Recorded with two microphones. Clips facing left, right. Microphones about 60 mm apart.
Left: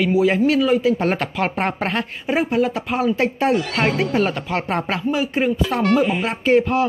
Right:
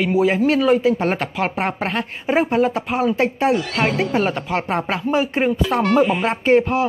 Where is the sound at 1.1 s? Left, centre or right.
Centre.